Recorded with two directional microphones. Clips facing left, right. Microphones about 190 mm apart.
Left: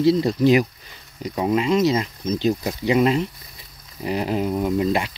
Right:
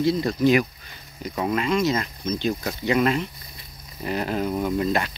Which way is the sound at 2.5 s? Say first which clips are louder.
Left 4 dB; 15° left (ahead or behind).